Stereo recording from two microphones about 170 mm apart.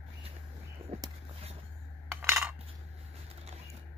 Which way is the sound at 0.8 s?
35° right (ahead or behind).